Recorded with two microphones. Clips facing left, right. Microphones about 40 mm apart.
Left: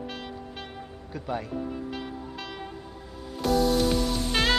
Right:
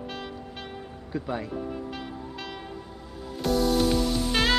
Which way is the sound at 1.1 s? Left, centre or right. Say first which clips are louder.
Right 1 dB; centre.